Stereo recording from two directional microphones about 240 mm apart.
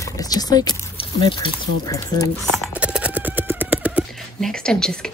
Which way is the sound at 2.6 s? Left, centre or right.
Centre.